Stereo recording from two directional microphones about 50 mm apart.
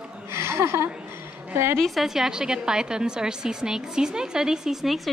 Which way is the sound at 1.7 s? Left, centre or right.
Centre.